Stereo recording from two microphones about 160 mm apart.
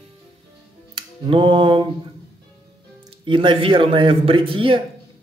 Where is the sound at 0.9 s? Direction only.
30° right (ahead or behind).